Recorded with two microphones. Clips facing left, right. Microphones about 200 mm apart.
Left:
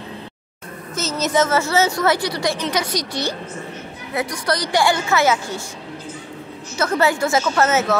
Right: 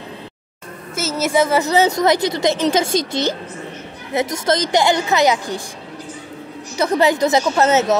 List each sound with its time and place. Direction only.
0.9 s a woman's voice: 10° right (ahead or behind)
6.8 s speech: 15° right (ahead or behind)